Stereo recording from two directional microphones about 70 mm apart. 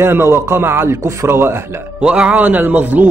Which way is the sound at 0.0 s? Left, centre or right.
Right.